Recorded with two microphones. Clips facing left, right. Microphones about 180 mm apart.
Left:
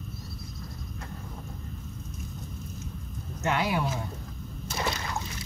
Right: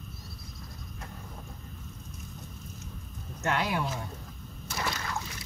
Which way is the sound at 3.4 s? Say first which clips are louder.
Left 2 dB; 5° left (ahead or behind).